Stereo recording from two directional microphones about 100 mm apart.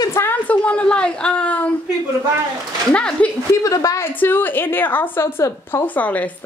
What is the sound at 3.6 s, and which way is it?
Speech, 35° left (ahead or behind).